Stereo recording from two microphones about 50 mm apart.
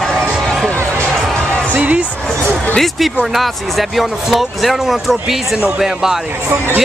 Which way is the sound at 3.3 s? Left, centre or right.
Centre.